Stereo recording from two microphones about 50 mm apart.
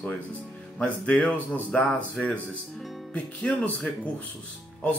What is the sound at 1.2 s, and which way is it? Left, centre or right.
Speech, left.